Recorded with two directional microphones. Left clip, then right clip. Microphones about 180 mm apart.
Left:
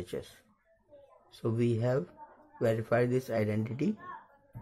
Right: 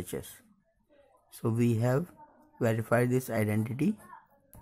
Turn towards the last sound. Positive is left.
turn(degrees=-25)  # may be behind; listen again after turning